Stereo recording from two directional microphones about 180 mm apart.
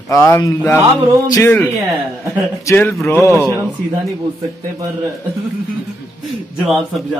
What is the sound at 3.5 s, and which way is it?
Speech, 5° right (ahead or behind).